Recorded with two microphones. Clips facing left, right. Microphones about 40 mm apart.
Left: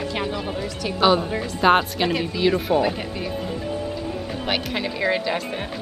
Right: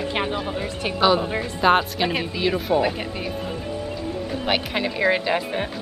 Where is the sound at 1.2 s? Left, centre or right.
Centre.